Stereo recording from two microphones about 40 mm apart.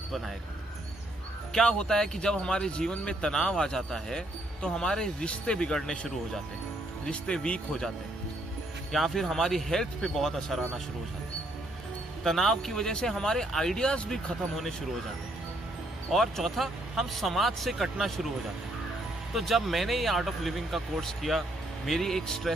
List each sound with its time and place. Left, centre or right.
1.5 s speech: centre
5.8 s speech: centre
7.3 s speech: left
8.9 s speech: centre
12.2 s speech: centre
16.1 s speech: centre
19.3 s speech: centre